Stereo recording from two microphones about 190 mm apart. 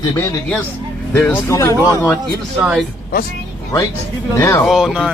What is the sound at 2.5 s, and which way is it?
Speech, 5° right (ahead or behind).